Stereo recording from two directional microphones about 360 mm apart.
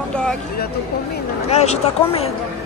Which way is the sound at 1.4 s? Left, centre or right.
Centre.